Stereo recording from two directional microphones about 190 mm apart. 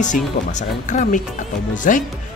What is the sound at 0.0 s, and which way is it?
Speech, 40° left (ahead or behind).